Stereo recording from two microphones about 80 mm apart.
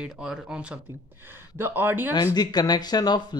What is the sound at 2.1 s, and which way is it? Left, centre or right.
Speech, left.